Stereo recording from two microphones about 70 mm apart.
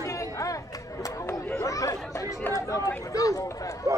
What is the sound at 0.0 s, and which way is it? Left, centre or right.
Chatter, left.